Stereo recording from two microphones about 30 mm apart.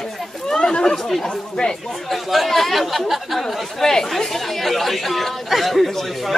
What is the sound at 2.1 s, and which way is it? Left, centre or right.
Speech, centre.